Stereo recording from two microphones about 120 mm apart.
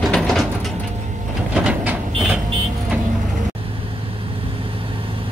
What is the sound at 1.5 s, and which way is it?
Train, 5° right (ahead or behind).